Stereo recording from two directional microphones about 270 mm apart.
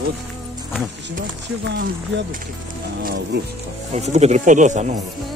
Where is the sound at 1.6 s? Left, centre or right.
Right.